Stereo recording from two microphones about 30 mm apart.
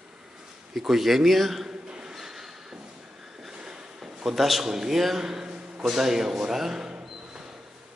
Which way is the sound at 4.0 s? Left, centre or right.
Centre.